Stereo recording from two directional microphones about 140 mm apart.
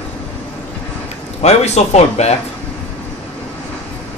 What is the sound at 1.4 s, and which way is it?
Speech, 50° left (ahead or behind).